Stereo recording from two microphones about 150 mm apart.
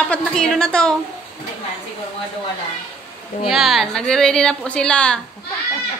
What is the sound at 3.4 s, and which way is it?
A woman's voice, centre (ahead or behind).